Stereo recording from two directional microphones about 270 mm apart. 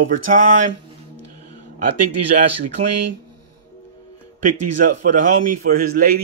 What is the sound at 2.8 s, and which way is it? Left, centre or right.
Speech, right.